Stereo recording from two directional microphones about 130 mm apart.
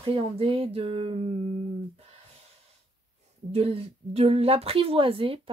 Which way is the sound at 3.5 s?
50° right (ahead or behind).